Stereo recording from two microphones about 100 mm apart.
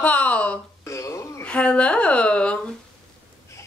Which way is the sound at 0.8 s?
30° left (ahead or behind).